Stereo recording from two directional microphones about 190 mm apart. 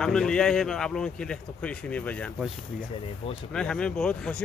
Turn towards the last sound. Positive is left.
turn(degrees=5)  # may be behind; listen again after turning